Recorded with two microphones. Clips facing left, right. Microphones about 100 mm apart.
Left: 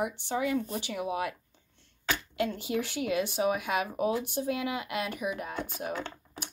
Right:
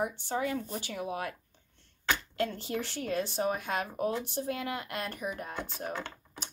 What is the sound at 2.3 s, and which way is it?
Speech, 10° left (ahead or behind).